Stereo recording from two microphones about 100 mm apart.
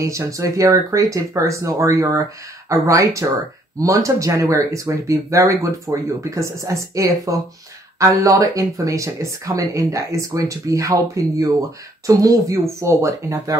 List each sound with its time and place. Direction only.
0.3 s speech: 30° right (ahead or behind)